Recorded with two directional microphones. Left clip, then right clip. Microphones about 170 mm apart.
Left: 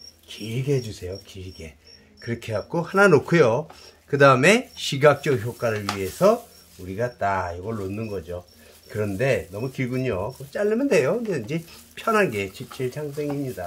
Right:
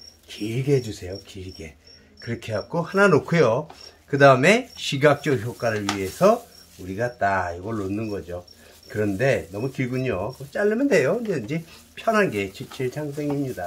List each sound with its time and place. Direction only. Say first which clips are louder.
0.3 s speech: right 3 dB; 20° left (ahead or behind)
2.2 s speech: even; 30° left (ahead or behind)